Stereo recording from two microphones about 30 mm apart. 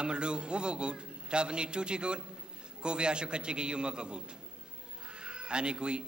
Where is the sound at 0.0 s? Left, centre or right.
Right.